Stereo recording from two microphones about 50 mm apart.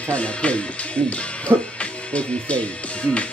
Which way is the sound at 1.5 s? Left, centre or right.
Right.